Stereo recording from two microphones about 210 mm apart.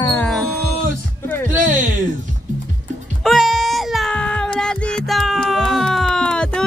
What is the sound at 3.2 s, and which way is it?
Music, centre (ahead or behind).